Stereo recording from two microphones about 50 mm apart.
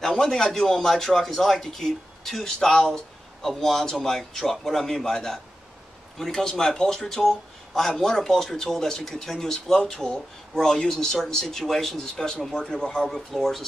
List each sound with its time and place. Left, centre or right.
0.0 s a man's voice: centre